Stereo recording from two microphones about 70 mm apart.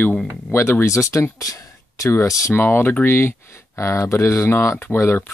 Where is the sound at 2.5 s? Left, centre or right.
Left.